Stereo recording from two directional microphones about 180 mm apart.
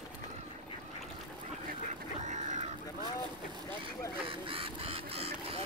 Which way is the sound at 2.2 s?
40° right (ahead or behind).